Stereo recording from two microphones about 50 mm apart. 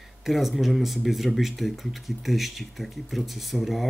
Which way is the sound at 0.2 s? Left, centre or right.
Centre.